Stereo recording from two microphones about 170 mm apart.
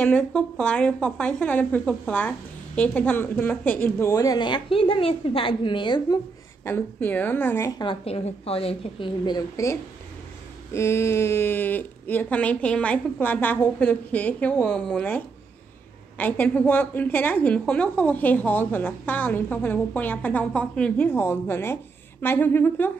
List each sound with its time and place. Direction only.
0.0 s a woman's voice: 5° left (ahead or behind); by 6.1 s 25° left (ahead or behind)
6.6 s a woman's voice: 10° left (ahead or behind)
7.8 s a woman's voice: 35° left (ahead or behind); by 22.8 s 10° left (ahead or behind)